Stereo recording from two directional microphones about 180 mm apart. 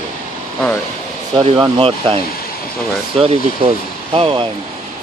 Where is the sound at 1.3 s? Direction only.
30° right (ahead or behind).